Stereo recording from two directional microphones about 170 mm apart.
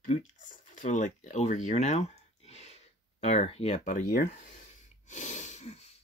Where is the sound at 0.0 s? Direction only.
45° left (ahead or behind).